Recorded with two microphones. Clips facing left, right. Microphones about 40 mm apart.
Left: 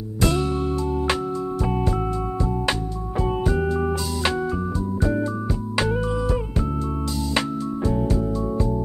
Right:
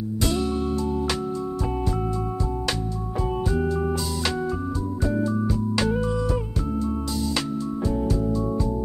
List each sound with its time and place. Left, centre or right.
0.2 s music: left
3.2 s music: left
5.5 s music: centre